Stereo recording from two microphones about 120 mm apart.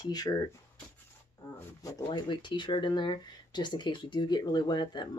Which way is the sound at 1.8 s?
30° left (ahead or behind).